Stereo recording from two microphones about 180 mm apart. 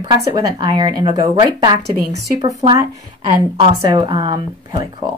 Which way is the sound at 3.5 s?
25° right (ahead or behind).